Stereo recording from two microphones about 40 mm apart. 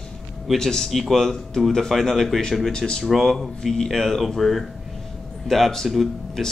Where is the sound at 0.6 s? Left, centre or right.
Centre.